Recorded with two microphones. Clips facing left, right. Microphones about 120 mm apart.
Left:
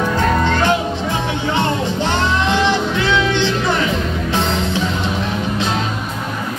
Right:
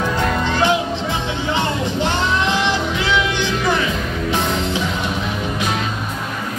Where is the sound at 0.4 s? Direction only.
15° right (ahead or behind).